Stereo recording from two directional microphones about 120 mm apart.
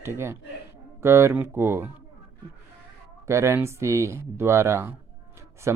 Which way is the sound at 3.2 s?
25° right (ahead or behind).